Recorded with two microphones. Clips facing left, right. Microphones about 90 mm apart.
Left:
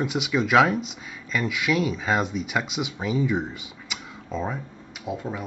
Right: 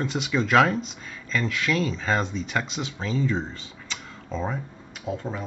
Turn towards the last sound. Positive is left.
turn(degrees=5)  # may be behind; listen again after turning